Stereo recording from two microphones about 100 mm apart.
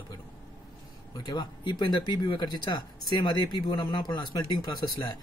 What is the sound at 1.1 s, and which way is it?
A man's voice, 45° left (ahead or behind).